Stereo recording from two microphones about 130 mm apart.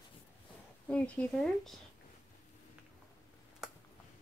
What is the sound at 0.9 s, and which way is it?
Speech, 10° left (ahead or behind).